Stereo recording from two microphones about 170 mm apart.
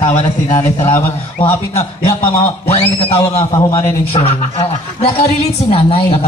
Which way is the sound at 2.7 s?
35° left (ahead or behind).